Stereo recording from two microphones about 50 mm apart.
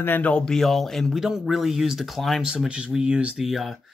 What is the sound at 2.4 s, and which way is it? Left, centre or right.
Speech, centre.